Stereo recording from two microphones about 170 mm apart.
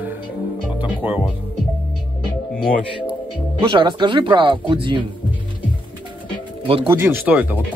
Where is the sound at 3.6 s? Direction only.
30° right (ahead or behind).